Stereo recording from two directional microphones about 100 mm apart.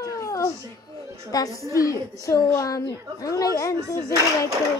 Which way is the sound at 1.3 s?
40° left (ahead or behind).